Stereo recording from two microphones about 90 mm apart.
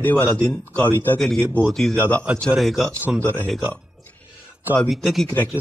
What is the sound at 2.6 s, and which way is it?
Speech, centre (ahead or behind).